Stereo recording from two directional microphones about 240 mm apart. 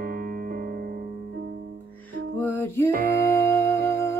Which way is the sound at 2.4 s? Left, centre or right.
Centre.